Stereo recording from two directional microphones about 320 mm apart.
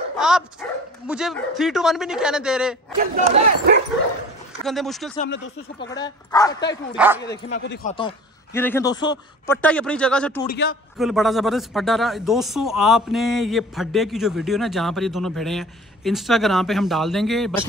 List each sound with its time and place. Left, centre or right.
0.2 s speech: centre
3.2 s speech: right
4.6 s speech: centre
5.1 s speech: left
5.9 s speech: centre
7.8 s speech: centre
10.4 s speech: left
11.0 s speech: centre